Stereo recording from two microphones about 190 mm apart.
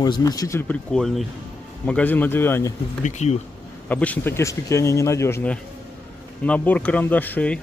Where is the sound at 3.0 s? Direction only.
40° left (ahead or behind).